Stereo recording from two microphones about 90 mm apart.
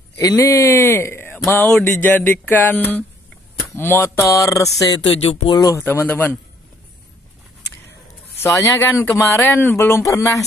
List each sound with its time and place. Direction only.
0.2 s speech: 40° left (ahead or behind); by 3.1 s 20° left (ahead or behind)
3.7 s a sound: 25° left (ahead or behind)
4.7 s speech: 45° left (ahead or behind)
5.0 s speech: 90° left
5.8 s speech: 25° left (ahead or behind)
8.4 s speech: 25° left (ahead or behind)
9.8 s a sound: 30° left (ahead or behind)